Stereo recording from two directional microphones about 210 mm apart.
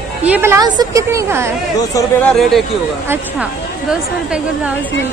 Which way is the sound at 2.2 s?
Centre (ahead or behind).